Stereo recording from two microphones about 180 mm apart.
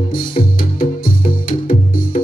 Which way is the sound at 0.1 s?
50° left (ahead or behind).